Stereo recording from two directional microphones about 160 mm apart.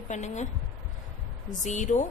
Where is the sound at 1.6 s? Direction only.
50° left (ahead or behind).